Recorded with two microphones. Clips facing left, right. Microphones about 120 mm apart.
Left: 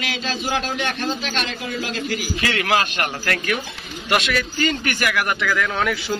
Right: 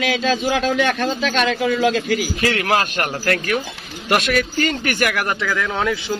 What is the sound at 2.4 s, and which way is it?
Speech, 45° right (ahead or behind).